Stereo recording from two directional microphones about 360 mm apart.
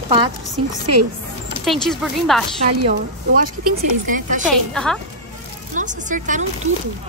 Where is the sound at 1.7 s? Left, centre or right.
Centre.